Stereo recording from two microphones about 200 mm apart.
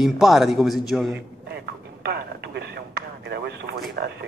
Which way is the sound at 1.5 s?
55° right (ahead or behind).